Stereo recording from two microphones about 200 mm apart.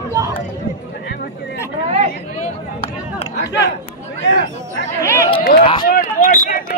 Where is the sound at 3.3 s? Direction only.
60° left (ahead or behind).